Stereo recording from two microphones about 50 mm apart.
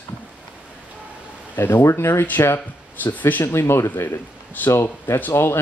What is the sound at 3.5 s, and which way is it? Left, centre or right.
Speech, left.